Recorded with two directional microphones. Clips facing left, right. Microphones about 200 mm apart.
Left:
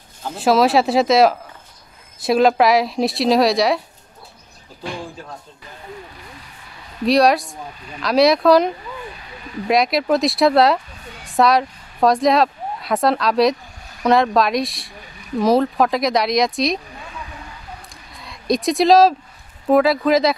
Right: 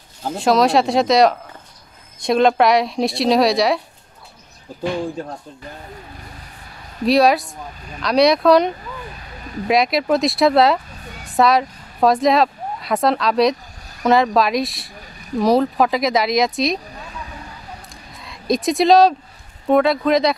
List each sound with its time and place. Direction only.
0.4 s speech: centre (ahead or behind)
7.1 s speech: centre (ahead or behind)
18.1 s speech: centre (ahead or behind)